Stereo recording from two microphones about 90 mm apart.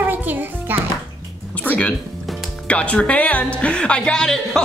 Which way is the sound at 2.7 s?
15° left (ahead or behind).